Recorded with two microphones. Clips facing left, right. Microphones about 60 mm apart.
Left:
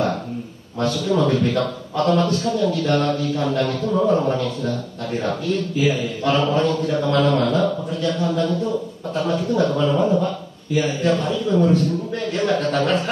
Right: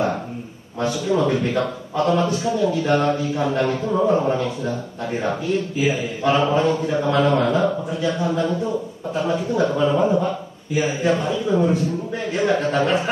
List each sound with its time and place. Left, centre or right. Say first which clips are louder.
0.7 s a man's voice: left 1 dB; centre